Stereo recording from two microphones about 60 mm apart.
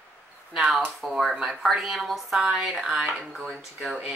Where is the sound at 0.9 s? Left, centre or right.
Centre.